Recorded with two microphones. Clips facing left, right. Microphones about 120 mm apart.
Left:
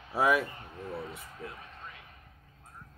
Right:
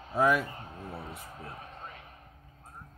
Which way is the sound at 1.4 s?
35° right (ahead or behind).